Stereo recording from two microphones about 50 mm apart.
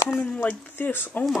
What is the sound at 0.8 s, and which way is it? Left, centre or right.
Speech, left.